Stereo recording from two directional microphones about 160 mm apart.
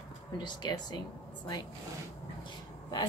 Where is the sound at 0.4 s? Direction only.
25° left (ahead or behind).